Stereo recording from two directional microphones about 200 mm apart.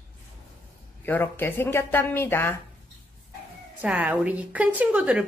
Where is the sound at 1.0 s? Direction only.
10° left (ahead or behind).